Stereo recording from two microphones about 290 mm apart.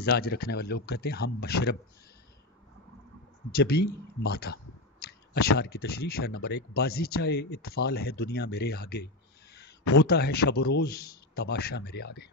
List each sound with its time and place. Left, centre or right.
0.0 s speech: left
3.5 s speech: left
5.0 s clicking: left
5.6 s speech: left
10.3 s speech: left
11.3 s speech: left